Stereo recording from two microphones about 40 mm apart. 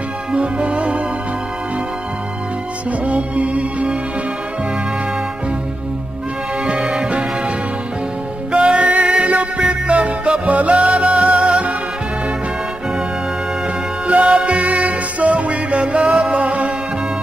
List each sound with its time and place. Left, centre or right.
0.3 s music: right
3.1 s music: right
6.6 s music: centre
14.2 s music: right